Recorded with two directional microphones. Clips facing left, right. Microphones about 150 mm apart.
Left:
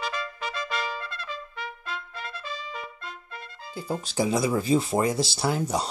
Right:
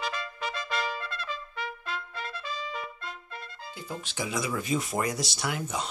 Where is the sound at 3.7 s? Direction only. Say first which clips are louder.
Left 9 dB; 35° left (ahead or behind).